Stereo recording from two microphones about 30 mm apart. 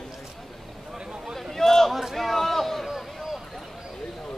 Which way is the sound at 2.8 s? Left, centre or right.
Centre.